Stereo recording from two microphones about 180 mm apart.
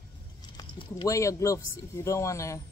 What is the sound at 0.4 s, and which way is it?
Speech, 25° left (ahead or behind).